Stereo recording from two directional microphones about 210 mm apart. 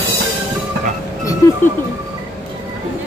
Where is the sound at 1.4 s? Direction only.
15° left (ahead or behind).